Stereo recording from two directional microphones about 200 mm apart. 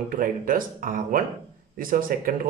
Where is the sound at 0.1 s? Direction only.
45° right (ahead or behind).